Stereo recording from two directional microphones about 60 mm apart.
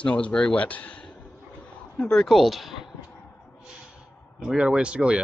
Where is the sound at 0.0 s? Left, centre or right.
Centre.